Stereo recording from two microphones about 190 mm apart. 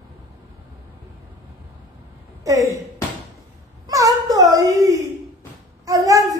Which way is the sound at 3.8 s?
20° right (ahead or behind).